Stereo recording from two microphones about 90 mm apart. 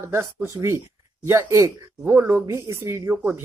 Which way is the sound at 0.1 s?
30° right (ahead or behind).